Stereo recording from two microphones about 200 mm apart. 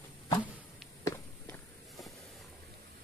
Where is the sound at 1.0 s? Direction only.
10° left (ahead or behind).